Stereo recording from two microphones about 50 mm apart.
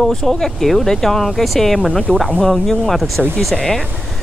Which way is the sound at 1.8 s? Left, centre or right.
Centre.